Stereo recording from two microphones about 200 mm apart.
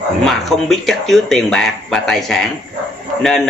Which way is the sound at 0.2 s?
Centre (ahead or behind).